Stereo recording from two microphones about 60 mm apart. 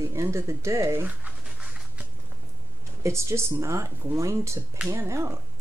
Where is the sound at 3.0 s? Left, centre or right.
Right.